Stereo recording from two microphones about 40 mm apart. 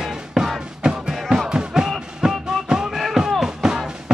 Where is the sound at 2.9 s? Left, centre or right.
Centre.